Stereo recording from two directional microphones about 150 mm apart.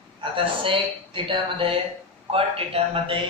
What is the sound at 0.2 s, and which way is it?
Speech, 35° right (ahead or behind).